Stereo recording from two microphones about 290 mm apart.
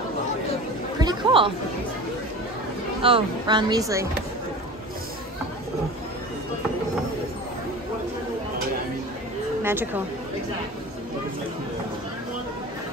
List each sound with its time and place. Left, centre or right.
0.9 s chatter: centre
3.0 s speech: centre
9.6 s a sound: centre